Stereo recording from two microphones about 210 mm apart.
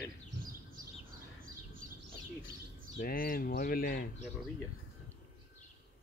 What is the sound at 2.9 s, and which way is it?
Speech, 40° left (ahead or behind).